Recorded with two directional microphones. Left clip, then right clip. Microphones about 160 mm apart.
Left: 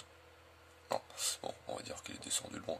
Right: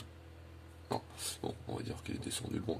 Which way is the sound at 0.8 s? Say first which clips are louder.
Left 2 dB; 25° left (ahead or behind).